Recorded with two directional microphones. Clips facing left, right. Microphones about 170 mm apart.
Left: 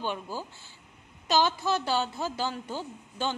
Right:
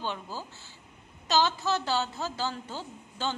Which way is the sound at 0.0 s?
15° left (ahead or behind).